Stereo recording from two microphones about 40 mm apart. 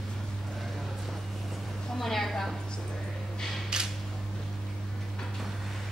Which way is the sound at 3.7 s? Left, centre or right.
Centre.